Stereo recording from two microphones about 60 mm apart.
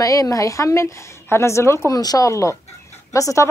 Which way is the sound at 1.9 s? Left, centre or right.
Left.